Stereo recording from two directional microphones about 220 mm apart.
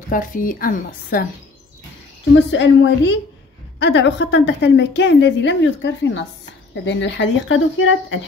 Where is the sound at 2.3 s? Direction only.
60° left (ahead or behind).